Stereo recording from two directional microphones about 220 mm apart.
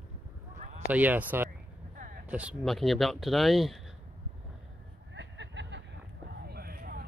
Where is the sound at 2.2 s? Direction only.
5° right (ahead or behind).